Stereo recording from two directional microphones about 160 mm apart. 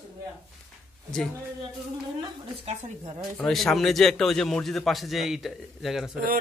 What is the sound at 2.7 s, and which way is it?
Speech, 45° right (ahead or behind).